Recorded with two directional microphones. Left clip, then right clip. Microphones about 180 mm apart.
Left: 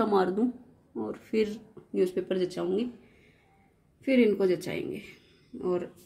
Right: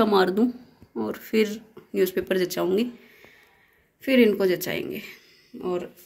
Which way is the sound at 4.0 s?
5° left (ahead or behind).